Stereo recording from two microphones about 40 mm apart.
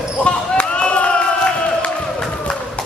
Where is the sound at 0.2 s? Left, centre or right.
Left.